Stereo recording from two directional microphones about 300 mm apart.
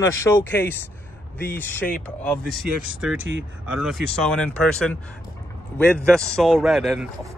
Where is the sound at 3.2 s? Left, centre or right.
Right.